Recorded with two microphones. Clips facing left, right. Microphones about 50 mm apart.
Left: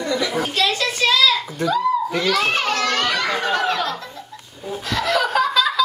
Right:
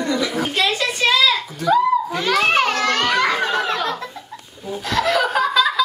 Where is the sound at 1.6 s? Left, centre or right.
Centre.